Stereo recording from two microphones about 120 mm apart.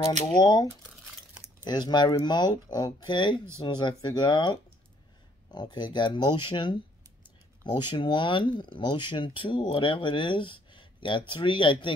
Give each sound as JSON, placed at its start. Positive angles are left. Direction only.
{"t": 0.4, "sound": "speech", "side_deg": 30}